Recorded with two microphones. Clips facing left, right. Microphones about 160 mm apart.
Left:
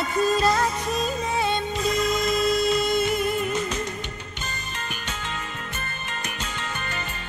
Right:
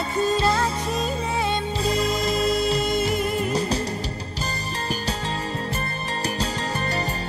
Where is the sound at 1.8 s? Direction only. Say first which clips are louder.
Even; 30° right (ahead or behind).